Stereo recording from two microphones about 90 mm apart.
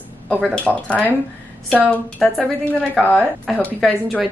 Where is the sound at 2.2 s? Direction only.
Centre (ahead or behind).